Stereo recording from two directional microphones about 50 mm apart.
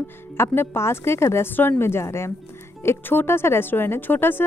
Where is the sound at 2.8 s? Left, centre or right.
Left.